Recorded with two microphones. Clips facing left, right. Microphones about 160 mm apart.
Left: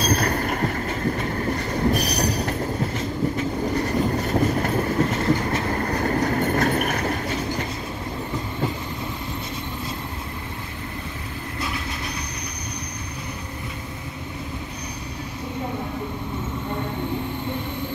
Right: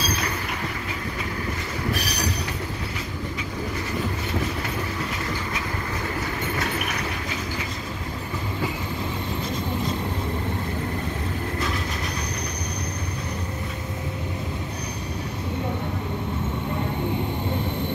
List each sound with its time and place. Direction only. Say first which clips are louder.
0.0 s train: left 6 dB; 45° left (ahead or behind)